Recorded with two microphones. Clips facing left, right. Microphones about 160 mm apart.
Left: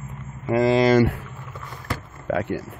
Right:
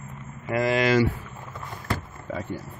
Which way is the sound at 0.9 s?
65° left (ahead or behind).